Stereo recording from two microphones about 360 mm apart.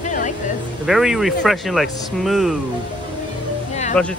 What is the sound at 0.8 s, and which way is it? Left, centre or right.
Speech, centre.